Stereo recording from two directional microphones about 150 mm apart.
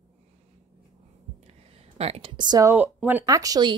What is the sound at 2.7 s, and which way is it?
Speech, 10° right (ahead or behind).